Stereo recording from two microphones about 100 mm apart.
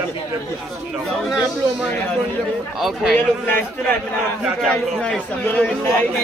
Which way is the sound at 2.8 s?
Centre (ahead or behind).